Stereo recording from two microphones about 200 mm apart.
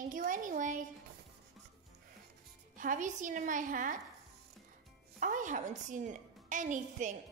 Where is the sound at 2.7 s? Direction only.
40° right (ahead or behind).